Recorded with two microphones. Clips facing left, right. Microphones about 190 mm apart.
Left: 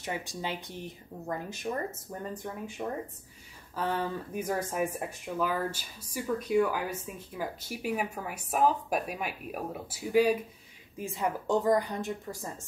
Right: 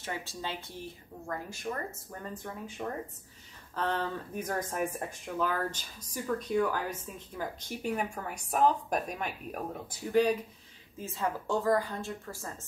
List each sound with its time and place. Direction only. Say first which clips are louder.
0.0 s speech: left 3 dB; 15° left (ahead or behind)
3.7 s speech: left 1 dB; 10° left (ahead or behind)